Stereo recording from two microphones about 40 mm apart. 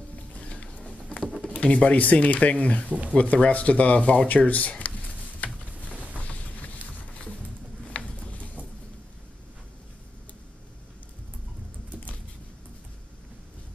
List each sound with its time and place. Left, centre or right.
0.4 s mechanisms: left
1.4 s speech: left
2.9 s speech: right
3.2 s a sound: left